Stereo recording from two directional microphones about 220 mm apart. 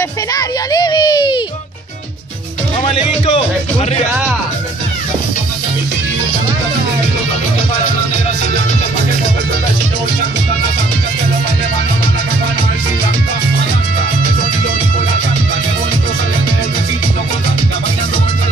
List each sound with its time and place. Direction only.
0.3 s a child's voice: 15° left (ahead or behind)
2.9 s a child's voice: 25° left (ahead or behind)